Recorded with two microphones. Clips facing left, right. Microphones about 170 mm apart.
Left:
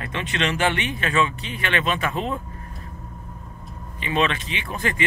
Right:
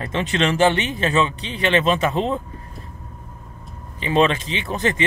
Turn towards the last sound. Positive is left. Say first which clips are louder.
# right 5 dB
turn(degrees=-25)  # may be behind; listen again after turning